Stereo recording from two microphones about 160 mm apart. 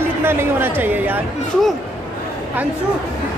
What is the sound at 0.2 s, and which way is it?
A woman's voice, 15° right (ahead or behind).